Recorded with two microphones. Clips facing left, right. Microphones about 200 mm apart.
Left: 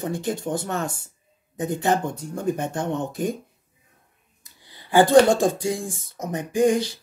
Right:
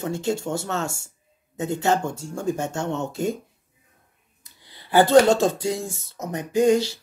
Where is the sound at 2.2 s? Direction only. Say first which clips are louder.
Left 1 dB; 20° left (ahead or behind).